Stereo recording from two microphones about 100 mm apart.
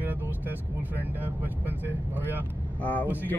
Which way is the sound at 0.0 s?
20° right (ahead or behind).